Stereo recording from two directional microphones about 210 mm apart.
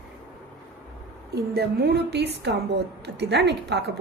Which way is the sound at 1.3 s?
50° right (ahead or behind).